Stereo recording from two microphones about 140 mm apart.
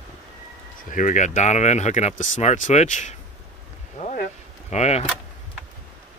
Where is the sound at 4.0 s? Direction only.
55° left (ahead or behind).